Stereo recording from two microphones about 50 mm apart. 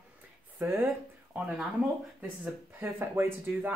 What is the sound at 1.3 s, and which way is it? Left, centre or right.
Speech, right.